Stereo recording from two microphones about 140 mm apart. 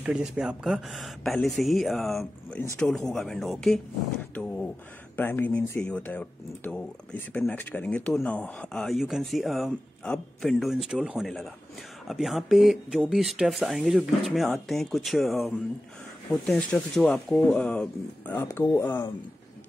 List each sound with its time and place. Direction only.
0.0 s speech: 5° right (ahead or behind); by 19.1 s 15° left (ahead or behind)